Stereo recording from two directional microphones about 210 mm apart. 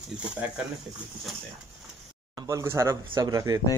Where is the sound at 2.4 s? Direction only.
15° right (ahead or behind).